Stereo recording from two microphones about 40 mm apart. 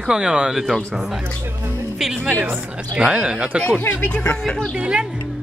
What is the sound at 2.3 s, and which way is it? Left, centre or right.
Speech, right.